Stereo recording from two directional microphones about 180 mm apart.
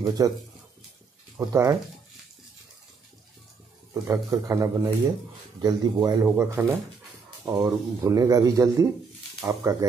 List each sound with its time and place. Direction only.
0.2 s speech: 20° right (ahead or behind)
1.4 s a man's voice: 15° right (ahead or behind)
3.9 s a man's voice: 15° right (ahead or behind)